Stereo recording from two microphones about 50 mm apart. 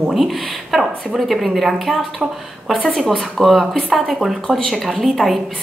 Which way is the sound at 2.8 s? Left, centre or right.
Centre.